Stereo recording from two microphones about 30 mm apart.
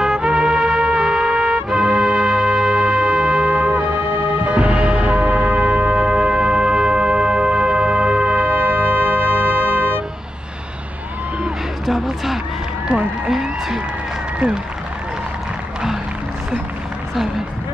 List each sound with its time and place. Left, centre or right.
0.0 s music: right
3.4 s music: right
4.6 s music: right
8.5 s music: right
11.8 s a sound: centre
12.8 s run: right